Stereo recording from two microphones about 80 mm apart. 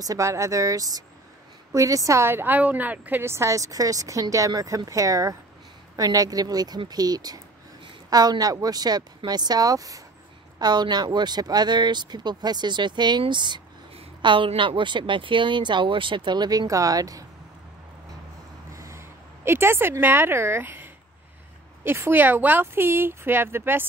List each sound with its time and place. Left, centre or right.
0.0 s speech: right
3.3 s speech: right
10.6 s speech: right
14.2 s speech: right
18.8 s a woman's voice: right